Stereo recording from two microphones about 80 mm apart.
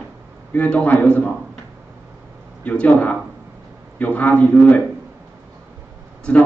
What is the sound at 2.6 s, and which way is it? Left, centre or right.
A man's voice, centre.